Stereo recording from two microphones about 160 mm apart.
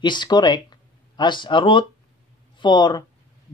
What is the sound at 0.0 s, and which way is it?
Speech, 30° left (ahead or behind).